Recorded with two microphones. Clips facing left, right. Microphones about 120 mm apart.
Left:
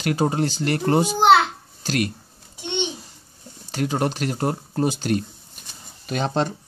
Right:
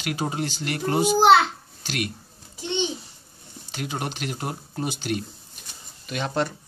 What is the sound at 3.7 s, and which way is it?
Speech, 40° left (ahead or behind).